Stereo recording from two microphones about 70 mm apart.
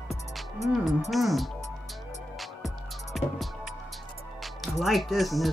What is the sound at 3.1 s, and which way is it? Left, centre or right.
Music, centre.